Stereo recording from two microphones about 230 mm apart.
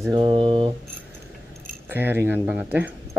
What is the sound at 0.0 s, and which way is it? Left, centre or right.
Speech, centre.